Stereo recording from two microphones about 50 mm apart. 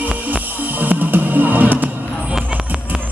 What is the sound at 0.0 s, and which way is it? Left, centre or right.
Music, right.